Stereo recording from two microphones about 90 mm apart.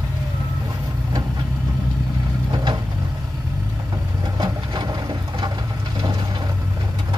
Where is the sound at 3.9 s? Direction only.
50° right (ahead or behind).